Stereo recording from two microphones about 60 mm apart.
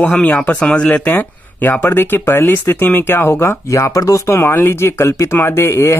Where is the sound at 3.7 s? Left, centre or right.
Left.